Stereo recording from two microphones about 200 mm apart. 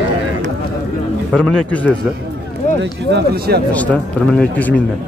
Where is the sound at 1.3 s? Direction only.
5° left (ahead or behind).